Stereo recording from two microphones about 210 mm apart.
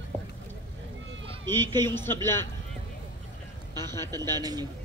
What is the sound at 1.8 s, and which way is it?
Speech, 10° left (ahead or behind).